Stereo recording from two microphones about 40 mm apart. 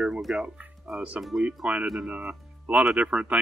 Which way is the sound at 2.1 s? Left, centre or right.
Right.